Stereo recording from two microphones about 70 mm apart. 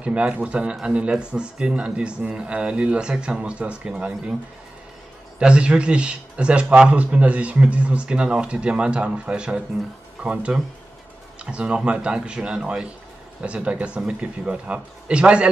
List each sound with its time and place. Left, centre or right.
0.0 s speech: centre
5.4 s speech: centre